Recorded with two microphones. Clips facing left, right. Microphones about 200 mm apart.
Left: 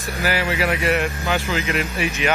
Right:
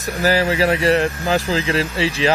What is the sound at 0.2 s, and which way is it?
Speech, 35° right (ahead or behind).